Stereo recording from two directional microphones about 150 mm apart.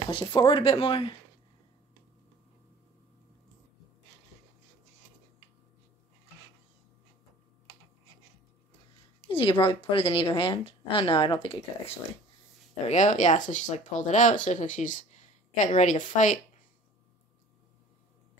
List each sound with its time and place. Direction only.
0.1 s speech: 35° left (ahead or behind)
9.3 s speech: 35° left (ahead or behind)
12.8 s speech: 50° left (ahead or behind)